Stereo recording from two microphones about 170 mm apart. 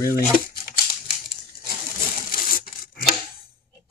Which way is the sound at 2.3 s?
55° left (ahead or behind).